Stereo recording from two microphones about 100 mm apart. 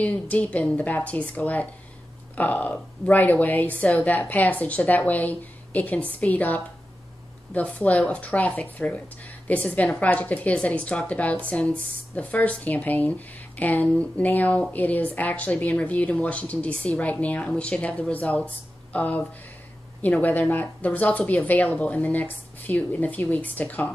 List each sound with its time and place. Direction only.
0.0 s speech: 15° left (ahead or behind)